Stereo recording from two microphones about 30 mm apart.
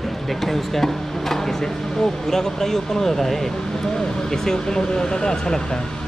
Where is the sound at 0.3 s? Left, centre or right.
Centre.